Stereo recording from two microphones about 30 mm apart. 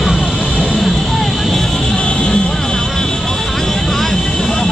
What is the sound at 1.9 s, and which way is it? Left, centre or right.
Music, left.